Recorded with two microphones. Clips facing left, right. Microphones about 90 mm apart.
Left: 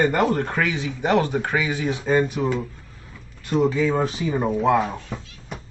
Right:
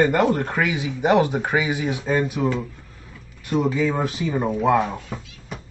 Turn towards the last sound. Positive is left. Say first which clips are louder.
# even
turn(degrees=-5)  # may be behind; listen again after turning